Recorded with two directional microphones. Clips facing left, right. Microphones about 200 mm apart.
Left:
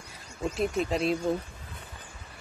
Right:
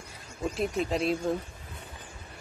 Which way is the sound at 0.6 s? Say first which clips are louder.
Left 1 dB; centre (ahead or behind).